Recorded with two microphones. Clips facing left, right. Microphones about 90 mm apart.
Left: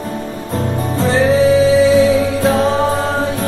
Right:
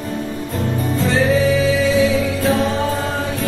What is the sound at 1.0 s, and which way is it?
Music, 40° left (ahead or behind).